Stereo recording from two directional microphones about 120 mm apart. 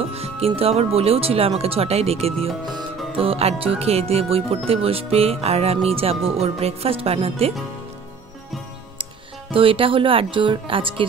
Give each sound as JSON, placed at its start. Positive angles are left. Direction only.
{"t": 0.1, "sound": "speech", "side_deg": -55}
{"t": 9.5, "sound": "speech", "side_deg": -50}